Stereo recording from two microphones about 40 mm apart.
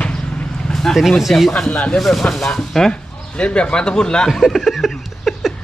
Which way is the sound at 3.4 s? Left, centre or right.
Left.